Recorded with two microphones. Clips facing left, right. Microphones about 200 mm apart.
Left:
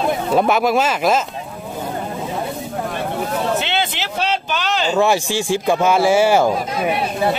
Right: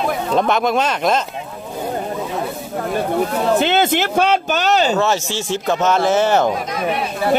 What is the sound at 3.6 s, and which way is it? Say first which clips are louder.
Speech: right 7 dB; 45° right (ahead or behind).